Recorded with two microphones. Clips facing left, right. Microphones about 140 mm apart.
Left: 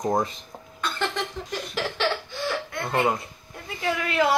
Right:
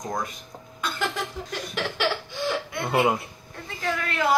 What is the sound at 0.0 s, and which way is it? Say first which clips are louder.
Speech: left 6 dB; 30° left (ahead or behind).